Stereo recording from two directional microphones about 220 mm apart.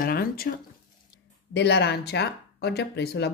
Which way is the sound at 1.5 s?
50° left (ahead or behind).